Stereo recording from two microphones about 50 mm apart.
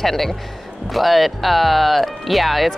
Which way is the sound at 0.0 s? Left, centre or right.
Centre.